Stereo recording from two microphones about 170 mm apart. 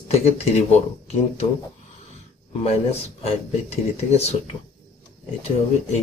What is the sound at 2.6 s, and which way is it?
Speech, 40° left (ahead or behind).